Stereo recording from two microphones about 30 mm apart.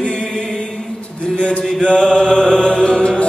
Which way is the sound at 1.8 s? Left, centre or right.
Left.